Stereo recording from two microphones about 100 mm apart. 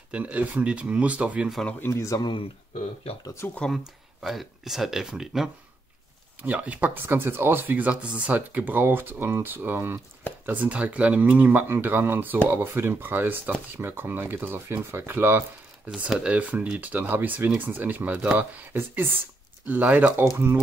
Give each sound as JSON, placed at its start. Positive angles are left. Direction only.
{"t": 0.1, "sound": "speech", "side_deg": -15}
{"t": 1.9, "sound": "speech", "side_deg": 30}
{"t": 2.7, "sound": "speech", "side_deg": 80}
{"t": 3.5, "sound": "speech", "side_deg": 5}
{"t": 16.1, "sound": "speech", "side_deg": -10}